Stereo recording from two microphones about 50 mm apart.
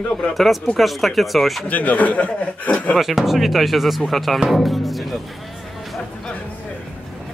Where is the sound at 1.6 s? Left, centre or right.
Left.